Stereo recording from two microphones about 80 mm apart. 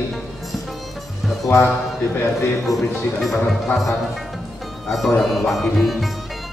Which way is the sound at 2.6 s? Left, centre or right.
Centre.